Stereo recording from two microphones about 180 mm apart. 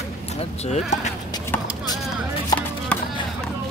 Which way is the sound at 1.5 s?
10° left (ahead or behind).